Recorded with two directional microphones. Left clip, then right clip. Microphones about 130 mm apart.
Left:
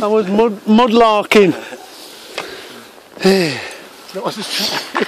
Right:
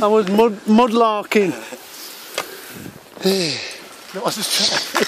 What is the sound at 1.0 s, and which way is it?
Speech, 70° left (ahead or behind).